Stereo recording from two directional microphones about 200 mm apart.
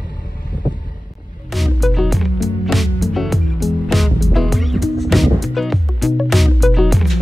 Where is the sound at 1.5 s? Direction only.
Centre (ahead or behind).